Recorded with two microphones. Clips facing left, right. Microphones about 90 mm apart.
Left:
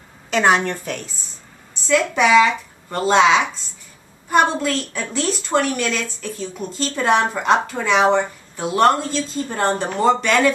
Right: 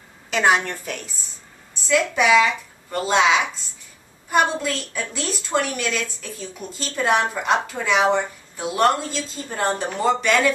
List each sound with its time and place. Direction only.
0.3 s a woman's voice: 5° right (ahead or behind)